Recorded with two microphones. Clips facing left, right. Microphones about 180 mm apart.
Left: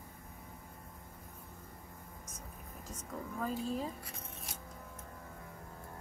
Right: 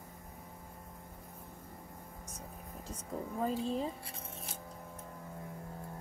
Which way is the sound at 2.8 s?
30° right (ahead or behind).